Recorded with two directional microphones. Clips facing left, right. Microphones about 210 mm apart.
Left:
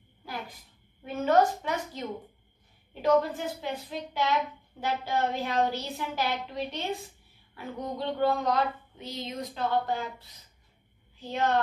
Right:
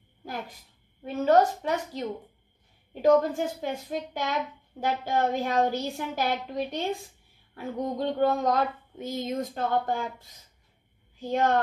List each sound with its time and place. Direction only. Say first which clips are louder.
1.0 s a woman's voice: right 2 dB; 35° right (ahead or behind)